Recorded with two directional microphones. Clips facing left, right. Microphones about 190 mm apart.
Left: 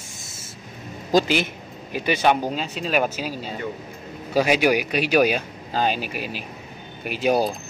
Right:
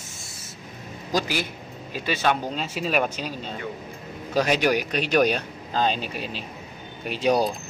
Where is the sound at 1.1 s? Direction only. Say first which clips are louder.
Left 6 dB; 25° left (ahead or behind).